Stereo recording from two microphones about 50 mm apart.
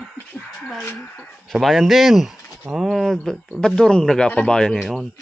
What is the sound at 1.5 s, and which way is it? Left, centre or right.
Speech, centre.